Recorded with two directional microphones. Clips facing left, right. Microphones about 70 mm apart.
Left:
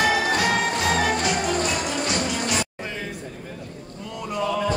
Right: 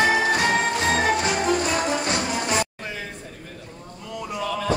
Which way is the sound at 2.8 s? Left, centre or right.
Centre.